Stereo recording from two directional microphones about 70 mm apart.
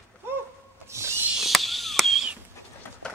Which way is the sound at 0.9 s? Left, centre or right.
Right.